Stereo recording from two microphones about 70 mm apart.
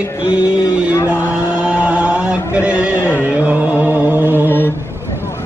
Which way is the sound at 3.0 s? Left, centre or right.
Left.